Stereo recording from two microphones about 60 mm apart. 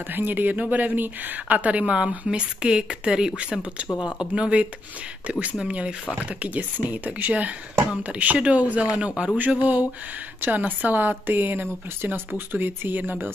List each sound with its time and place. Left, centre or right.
0.1 s speech: right